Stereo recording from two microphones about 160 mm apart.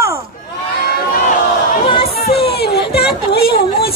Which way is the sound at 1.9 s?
40° left (ahead or behind).